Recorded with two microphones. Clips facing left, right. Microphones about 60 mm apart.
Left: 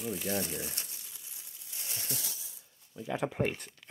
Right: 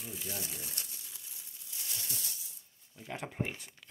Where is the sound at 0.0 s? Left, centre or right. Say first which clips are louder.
Left 9 dB; left.